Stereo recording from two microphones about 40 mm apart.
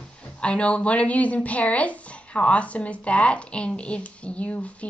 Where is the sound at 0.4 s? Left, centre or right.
Left.